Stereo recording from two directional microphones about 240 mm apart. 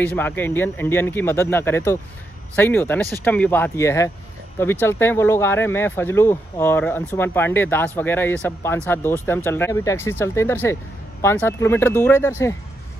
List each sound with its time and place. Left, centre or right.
0.0 s speech: centre